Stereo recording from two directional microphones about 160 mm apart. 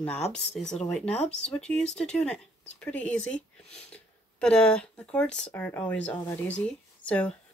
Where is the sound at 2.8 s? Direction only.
10° left (ahead or behind).